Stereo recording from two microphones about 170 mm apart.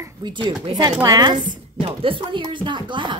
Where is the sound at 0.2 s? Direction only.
25° right (ahead or behind).